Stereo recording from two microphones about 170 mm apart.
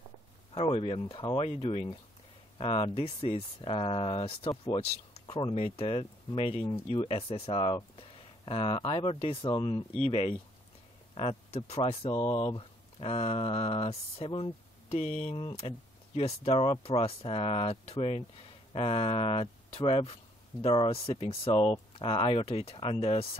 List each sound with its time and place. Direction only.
0.6 s speech: 35° left (ahead or behind)